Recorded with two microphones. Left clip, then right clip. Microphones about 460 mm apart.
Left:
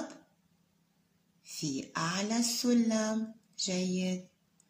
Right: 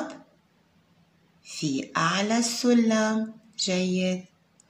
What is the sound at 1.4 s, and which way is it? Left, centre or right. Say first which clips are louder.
Speech: right 8 dB; right.